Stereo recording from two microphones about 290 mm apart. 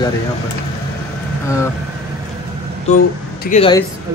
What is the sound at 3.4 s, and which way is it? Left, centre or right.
Speech, left.